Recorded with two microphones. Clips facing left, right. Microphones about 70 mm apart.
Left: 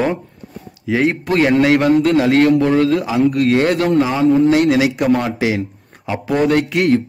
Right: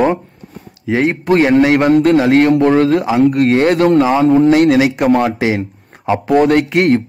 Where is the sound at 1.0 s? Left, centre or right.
Right.